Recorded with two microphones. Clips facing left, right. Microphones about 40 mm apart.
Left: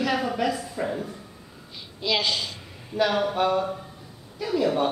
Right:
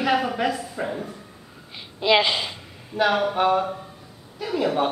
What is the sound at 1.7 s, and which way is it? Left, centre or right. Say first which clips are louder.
A woman's voice: right 7 dB; right.